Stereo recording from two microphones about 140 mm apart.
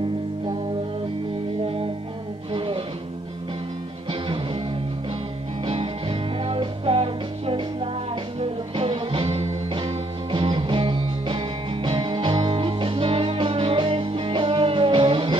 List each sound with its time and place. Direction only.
2.5 s music: 40° right (ahead or behind)
4.1 s music: 40° right (ahead or behind)
5.7 s music: 40° right (ahead or behind)